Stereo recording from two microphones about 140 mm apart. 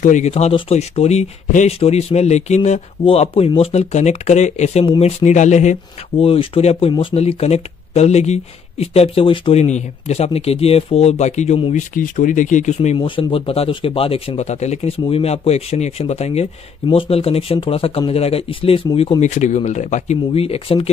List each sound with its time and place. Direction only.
0.0 s speech: 55° left (ahead or behind)
6.1 s speech: 40° left (ahead or behind)
11.7 s speech: 75° left (ahead or behind)
12.9 s speech: 40° left (ahead or behind)